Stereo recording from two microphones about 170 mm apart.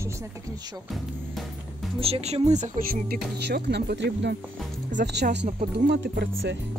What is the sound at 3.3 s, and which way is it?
Speech, 80° right.